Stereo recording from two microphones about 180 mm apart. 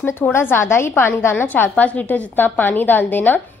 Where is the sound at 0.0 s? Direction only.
15° left (ahead or behind).